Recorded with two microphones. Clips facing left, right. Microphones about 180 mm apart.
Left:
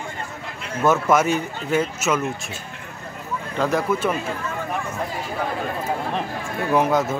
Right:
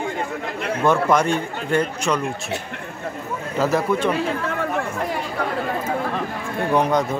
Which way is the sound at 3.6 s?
Centre (ahead or behind).